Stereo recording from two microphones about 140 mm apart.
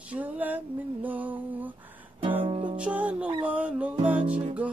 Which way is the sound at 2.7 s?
10° right (ahead or behind).